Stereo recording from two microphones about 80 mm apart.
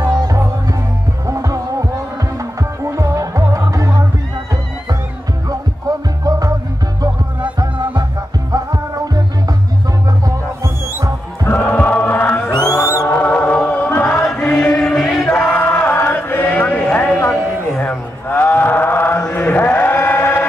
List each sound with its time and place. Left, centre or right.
0.2 s music: right
5.9 s music: right
10.2 s music: right
11.4 s chant: left
12.4 s music: left
13.1 s chant: left
14.4 s choir: left
15.2 s a sound: centre
15.7 s music: left
17.8 s chant: left